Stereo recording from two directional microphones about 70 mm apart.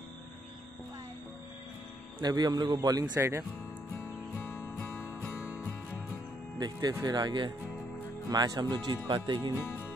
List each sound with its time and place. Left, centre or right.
2.2 s a man's voice: right
2.8 s speech: right
3.2 s speech: right
4.4 s music: left
5.4 s music: right
6.6 s a man's voice: right